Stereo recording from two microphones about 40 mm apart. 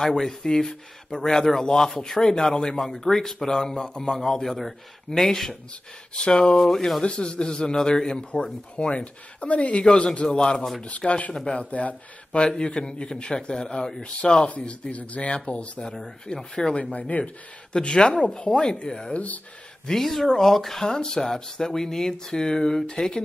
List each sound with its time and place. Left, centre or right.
0.4 s speech: centre
6.1 s a man's voice: centre
7.1 s a man's voice: left
9.8 s a man's voice: centre
10.8 s a man's voice: left
14.7 s speech: left
16.3 s speech: centre
17.1 s speech: left
17.8 s a man's voice: left
19.1 s speech: left
19.9 s speech: centre